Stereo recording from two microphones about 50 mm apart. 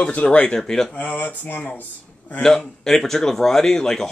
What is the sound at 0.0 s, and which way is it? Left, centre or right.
Speech, left.